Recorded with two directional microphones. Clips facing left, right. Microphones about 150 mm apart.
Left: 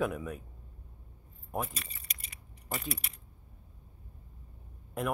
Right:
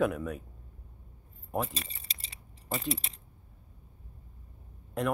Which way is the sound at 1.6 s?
30° right (ahead or behind).